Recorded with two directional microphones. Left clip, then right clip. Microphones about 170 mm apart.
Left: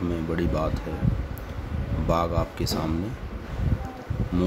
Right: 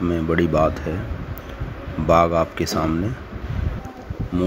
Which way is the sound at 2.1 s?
20° right (ahead or behind).